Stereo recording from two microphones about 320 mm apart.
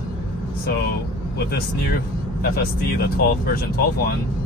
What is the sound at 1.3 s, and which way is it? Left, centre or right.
Speech, left.